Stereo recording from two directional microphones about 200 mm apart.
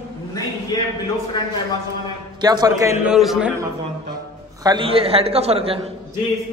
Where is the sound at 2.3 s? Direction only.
20° right (ahead or behind).